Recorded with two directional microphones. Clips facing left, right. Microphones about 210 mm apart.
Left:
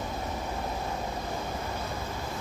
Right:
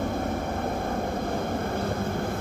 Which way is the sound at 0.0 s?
55° right (ahead or behind).